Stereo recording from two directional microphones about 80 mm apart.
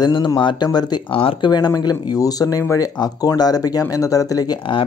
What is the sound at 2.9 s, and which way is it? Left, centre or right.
Speech, left.